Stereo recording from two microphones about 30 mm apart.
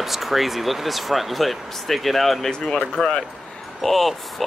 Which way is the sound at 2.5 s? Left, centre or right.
Left.